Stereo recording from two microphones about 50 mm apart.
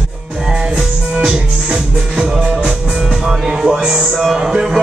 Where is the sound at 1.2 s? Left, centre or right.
Centre.